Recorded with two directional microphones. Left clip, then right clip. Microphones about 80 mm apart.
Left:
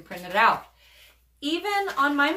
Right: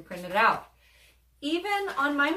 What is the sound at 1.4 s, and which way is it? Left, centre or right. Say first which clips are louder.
Speech: left 3 dB; left.